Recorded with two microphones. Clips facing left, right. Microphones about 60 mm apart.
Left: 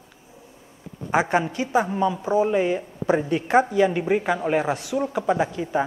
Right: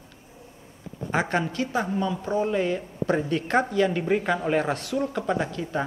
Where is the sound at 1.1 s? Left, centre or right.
Centre.